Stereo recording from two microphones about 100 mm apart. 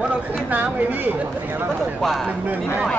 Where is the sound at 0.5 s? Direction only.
15° right (ahead or behind).